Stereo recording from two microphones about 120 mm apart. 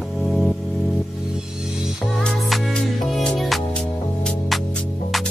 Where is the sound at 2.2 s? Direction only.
5° left (ahead or behind).